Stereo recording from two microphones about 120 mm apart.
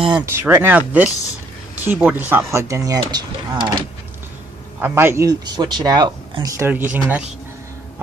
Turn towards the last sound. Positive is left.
turn(degrees=-15)  # may be behind; listen again after turning